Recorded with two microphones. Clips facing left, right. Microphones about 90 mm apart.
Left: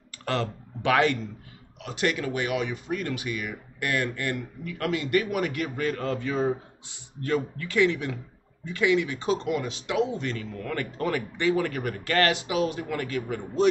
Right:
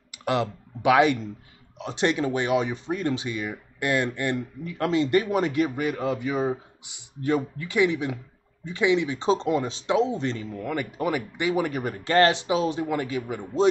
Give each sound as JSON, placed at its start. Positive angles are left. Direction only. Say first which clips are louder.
{"t": 0.1, "sound": "speech", "louder": "right 3 dB", "side_deg": -15}